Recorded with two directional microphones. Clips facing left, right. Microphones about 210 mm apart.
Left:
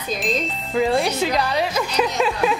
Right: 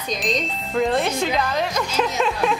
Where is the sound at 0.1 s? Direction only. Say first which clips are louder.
Left 1 dB; centre (ahead or behind).